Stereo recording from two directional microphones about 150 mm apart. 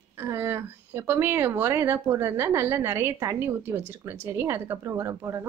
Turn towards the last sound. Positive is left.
turn(degrees=-20)  # may be behind; listen again after turning